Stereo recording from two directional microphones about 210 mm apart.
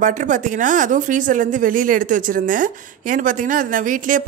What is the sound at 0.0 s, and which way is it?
Speech, 35° right (ahead or behind).